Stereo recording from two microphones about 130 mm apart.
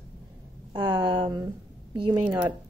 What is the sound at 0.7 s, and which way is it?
Speech, 40° right (ahead or behind).